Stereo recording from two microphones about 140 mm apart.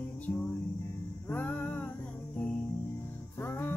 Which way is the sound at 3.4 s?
15° left (ahead or behind).